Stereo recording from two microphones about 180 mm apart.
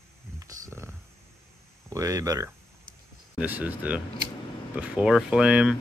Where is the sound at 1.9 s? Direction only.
15° right (ahead or behind).